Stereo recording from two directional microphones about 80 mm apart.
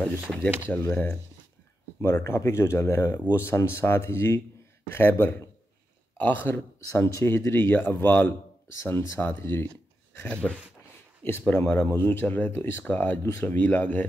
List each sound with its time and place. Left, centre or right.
0.7 s speech: left
10.2 s speech: centre
12.9 s speech: centre